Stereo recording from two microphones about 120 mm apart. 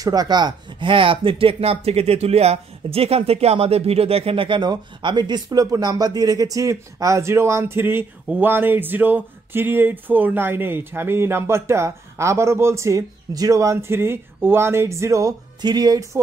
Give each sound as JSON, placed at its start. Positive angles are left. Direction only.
{"t": 0.0, "sound": "speech", "side_deg": -35}